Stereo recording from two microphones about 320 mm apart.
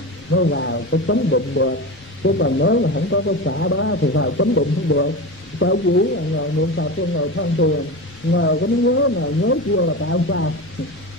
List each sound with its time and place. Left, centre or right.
0.3 s a man's voice: left